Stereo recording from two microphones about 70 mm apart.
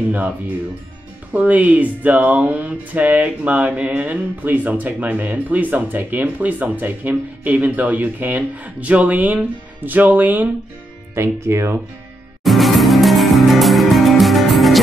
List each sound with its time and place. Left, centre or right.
1.3 s speech: right
11.1 s speech: right
12.4 s music: centre